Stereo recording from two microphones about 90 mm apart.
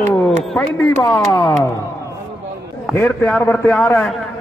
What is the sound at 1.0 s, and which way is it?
Speech, 55° left (ahead or behind).